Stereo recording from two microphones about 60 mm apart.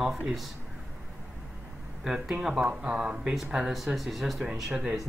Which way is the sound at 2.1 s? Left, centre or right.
Centre.